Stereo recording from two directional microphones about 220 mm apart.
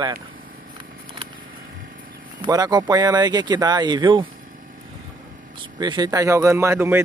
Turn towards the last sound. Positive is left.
turn(degrees=-10)  # may be behind; listen again after turning